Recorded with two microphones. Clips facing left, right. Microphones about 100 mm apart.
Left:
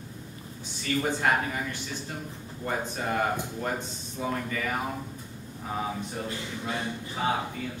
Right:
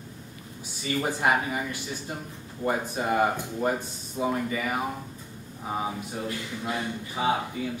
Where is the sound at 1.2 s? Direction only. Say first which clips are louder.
Right 2 dB; 15° right (ahead or behind).